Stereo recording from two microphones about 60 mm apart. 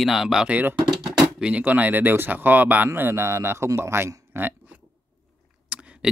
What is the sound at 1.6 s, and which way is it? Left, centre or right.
Speech, right.